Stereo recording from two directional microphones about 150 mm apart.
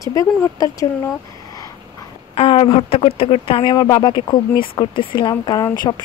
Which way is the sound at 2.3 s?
40° left (ahead or behind).